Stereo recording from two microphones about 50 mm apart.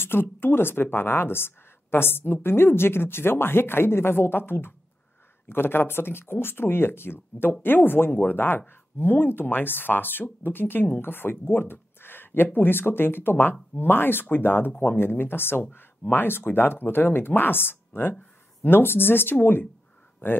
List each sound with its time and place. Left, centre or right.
0.0 s speech: left